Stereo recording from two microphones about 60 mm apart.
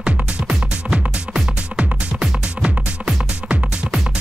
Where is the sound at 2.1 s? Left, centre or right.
Centre.